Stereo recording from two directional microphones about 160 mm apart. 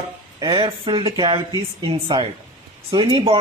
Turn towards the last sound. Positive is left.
turn(degrees=-30)  # may be behind; listen again after turning